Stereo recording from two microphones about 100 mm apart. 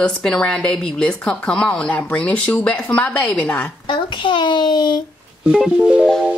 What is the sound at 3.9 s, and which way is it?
A child's voice, 55° left (ahead or behind).